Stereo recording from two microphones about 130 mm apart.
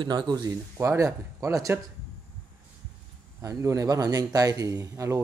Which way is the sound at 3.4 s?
25° right (ahead or behind).